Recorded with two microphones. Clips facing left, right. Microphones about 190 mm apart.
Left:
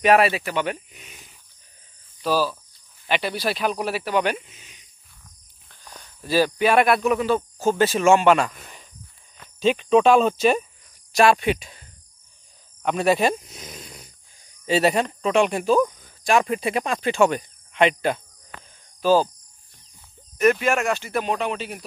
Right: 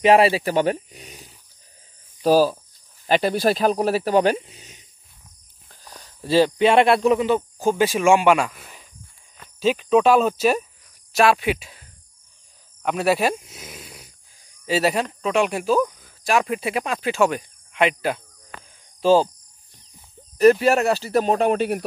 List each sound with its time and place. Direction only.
0.0 s speech: 25° right (ahead or behind)
6.2 s speech: 25° right (ahead or behind); by 18.2 s 5° right (ahead or behind)
18.9 s speech: 25° right (ahead or behind)
20.3 s speech: 35° right (ahead or behind); by 21.8 s 55° right (ahead or behind)